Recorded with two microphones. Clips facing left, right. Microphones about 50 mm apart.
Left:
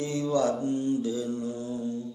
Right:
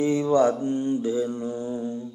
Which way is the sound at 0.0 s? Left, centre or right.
Right.